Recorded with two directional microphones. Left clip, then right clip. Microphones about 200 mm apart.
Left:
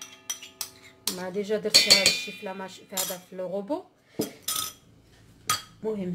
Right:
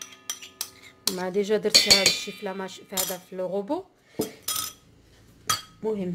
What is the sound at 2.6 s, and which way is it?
Speech, 35° right (ahead or behind).